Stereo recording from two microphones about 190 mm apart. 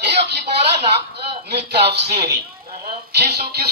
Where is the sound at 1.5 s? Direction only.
60° right (ahead or behind).